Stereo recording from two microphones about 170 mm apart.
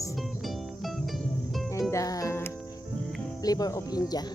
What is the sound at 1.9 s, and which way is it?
Music, 20° left (ahead or behind).